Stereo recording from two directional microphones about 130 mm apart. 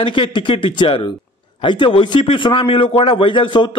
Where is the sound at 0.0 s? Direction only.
40° left (ahead or behind).